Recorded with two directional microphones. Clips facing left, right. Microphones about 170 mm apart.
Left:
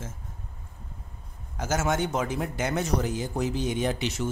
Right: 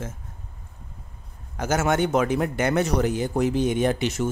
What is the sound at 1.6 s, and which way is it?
Speech, 65° right (ahead or behind).